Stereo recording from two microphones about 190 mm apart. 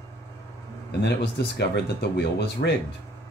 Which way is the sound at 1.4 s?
65° left (ahead or behind).